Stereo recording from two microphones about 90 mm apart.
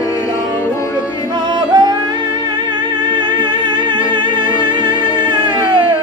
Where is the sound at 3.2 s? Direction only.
65° right (ahead or behind).